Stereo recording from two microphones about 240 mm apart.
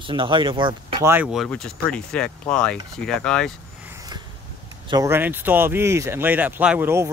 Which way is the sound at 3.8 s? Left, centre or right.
Centre.